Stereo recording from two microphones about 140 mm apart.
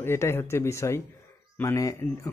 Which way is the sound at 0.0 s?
20° left (ahead or behind).